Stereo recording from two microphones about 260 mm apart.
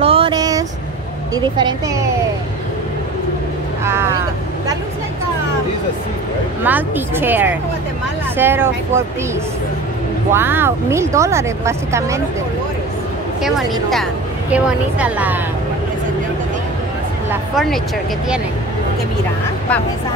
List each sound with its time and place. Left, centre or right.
0.0 s vehicle: right
1.3 s speech: centre
3.8 s speech: centre
6.6 s speech: centre
10.3 s speech: centre
14.5 s a woman's voice: centre
17.3 s a sound: centre